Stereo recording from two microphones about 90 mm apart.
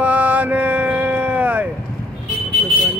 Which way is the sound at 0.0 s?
15° right (ahead or behind).